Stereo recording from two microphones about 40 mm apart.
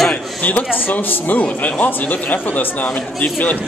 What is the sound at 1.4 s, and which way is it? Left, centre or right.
Speech, left.